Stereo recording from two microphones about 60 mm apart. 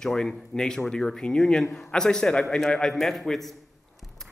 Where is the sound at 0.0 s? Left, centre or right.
Centre.